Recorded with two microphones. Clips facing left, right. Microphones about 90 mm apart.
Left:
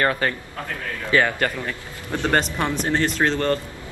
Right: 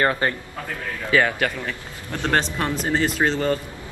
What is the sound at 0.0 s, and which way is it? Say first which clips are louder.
Speech: right 1 dB; 20° right (ahead or behind).